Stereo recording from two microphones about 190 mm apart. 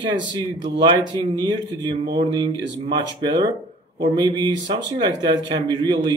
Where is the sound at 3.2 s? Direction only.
20° right (ahead or behind).